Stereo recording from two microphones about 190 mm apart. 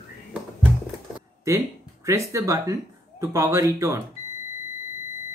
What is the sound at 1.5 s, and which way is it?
Speech, 15° right (ahead or behind).